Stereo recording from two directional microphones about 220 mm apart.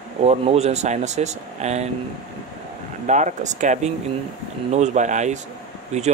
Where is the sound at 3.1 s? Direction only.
35° right (ahead or behind).